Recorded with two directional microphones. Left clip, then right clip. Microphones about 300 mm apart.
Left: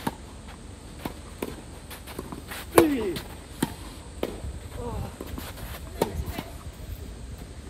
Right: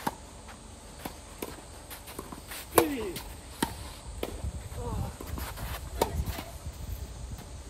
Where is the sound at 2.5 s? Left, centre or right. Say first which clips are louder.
Left 6 dB; centre.